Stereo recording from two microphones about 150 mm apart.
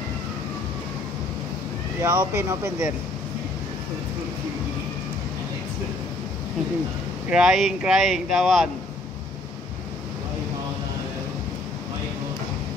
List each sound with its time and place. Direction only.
2.0 s speech: 15° right (ahead or behind)
7.2 s speech: 5° right (ahead or behind)